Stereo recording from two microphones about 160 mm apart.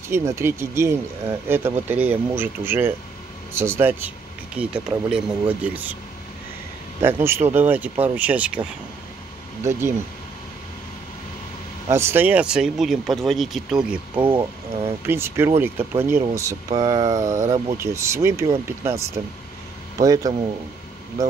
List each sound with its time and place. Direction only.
0.1 s speech: 15° right (ahead or behind)
7.0 s speech: 15° right (ahead or behind)
11.9 s a man's voice: 15° right (ahead or behind)